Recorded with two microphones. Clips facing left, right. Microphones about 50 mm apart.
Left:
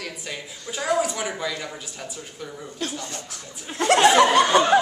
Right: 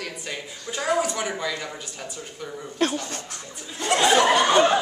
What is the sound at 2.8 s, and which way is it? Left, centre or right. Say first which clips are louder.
Speech: right 7 dB; right.